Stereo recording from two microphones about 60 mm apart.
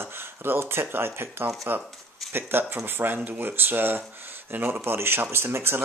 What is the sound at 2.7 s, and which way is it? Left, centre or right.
Speech, right.